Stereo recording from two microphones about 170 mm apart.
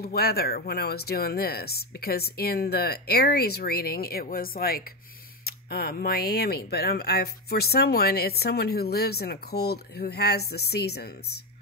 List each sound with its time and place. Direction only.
0.0 s speech: 65° left (ahead or behind)